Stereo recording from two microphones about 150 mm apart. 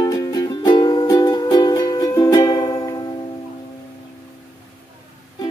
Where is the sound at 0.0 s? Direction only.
25° left (ahead or behind).